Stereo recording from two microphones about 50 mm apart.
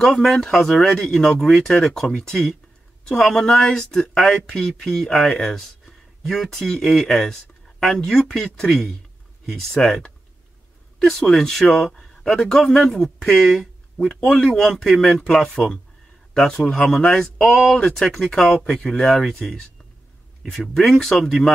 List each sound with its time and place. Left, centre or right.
0.0 s speech: centre
14.3 s speech: centre
14.6 s speech: centre
15.5 s speech: left
16.9 s speech: centre
17.5 s speech: centre
20.7 s speech: centre